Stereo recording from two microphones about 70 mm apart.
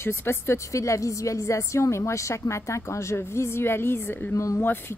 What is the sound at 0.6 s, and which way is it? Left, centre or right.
A woman's voice, left.